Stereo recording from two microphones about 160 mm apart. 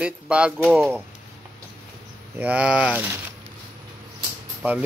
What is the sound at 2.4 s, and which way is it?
Speech, 10° right (ahead or behind).